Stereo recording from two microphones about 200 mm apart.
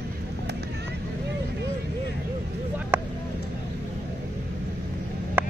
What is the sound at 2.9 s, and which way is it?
Vehicle, 10° right (ahead or behind).